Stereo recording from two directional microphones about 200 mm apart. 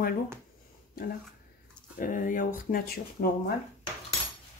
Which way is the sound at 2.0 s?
40° left (ahead or behind).